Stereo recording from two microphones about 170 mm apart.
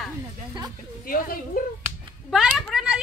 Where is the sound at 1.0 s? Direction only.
55° left (ahead or behind).